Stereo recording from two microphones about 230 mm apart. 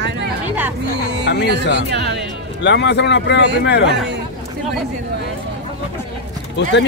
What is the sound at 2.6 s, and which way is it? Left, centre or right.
Speech, left.